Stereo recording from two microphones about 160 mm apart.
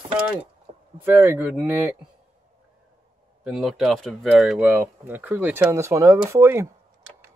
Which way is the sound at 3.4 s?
Centre (ahead or behind).